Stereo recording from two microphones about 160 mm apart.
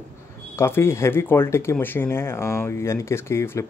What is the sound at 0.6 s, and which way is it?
Speech, 15° left (ahead or behind).